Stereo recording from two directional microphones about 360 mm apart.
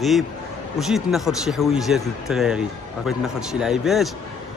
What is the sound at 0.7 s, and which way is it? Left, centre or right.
A man's voice, centre.